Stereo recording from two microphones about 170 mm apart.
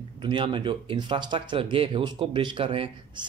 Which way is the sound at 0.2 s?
25° right (ahead or behind).